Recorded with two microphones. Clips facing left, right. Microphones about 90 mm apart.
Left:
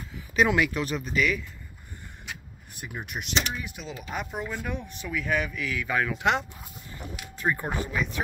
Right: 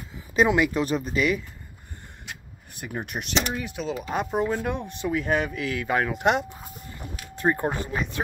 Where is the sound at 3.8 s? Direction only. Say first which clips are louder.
Right 7 dB; 35° right (ahead or behind).